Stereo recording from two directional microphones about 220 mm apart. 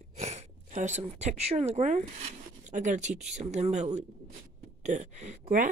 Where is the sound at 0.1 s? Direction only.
30° right (ahead or behind).